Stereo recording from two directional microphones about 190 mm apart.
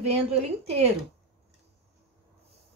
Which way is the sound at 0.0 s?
35° right (ahead or behind).